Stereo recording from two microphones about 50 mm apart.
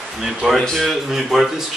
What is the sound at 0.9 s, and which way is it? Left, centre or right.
Speech, centre.